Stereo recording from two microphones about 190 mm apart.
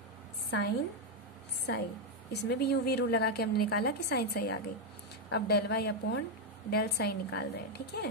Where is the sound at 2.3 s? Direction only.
60° left (ahead or behind).